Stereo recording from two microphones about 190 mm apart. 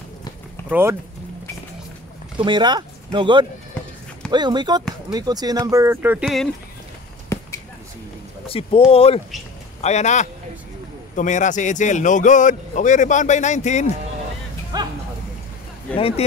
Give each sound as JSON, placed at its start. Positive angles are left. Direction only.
{"t": 0.7, "sound": "speech", "side_deg": -10}
{"t": 2.3, "sound": "speech", "side_deg": -25}
{"t": 7.3, "sound": "basketball bounce", "side_deg": 15}
{"t": 8.5, "sound": "speech", "side_deg": 30}
{"t": 14.7, "sound": "a sound", "side_deg": -20}
{"t": 16.0, "sound": "speech", "side_deg": 30}